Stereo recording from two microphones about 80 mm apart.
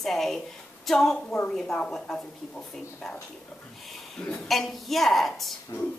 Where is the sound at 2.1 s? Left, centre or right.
Centre.